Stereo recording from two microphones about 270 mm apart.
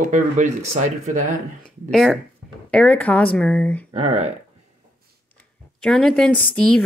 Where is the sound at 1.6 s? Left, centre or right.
Centre.